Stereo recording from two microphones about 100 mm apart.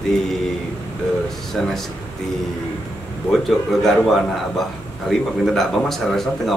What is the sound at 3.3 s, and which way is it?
A man's voice, centre (ahead or behind).